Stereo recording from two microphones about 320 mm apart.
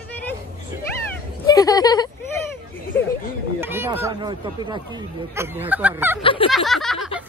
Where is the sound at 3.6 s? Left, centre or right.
Centre.